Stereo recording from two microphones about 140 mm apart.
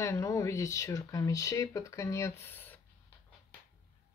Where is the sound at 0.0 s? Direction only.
20° left (ahead or behind).